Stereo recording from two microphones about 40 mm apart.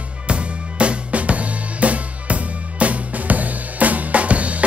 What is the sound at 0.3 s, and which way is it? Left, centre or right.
Drum kit, right.